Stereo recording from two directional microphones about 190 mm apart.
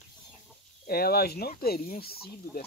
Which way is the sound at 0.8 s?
55° left (ahead or behind).